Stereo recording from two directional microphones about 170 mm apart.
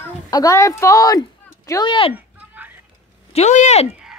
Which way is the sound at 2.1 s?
10° right (ahead or behind).